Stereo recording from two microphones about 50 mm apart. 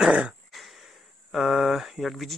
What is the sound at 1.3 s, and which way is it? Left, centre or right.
Speech, centre.